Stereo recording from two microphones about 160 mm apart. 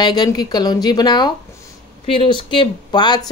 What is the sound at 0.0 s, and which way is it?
A woman's voice, 25° left (ahead or behind).